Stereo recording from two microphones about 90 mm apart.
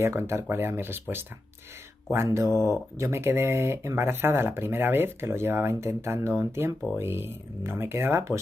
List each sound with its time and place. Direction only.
0.0 s speech: 30° right (ahead or behind)
2.2 s speech: 30° right (ahead or behind)